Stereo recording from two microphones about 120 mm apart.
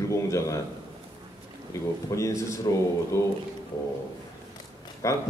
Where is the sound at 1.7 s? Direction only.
25° left (ahead or behind).